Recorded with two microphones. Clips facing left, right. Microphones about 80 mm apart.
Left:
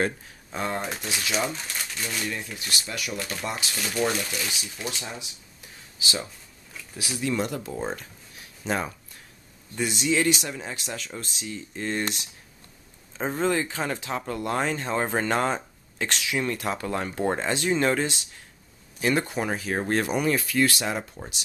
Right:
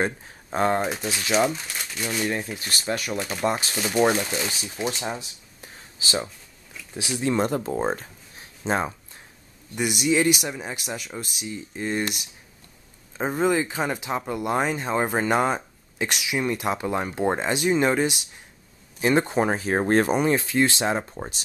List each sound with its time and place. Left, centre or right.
0.5 s speech: right
1.5 s speech: centre
2.2 s speech: right
3.2 s speech: centre
3.4 s speech: right
3.7 s speech: right
9.8 s speech: centre; by 21.4 s right